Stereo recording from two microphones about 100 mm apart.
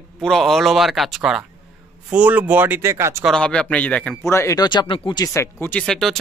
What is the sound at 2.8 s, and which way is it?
Speech, 30° right (ahead or behind).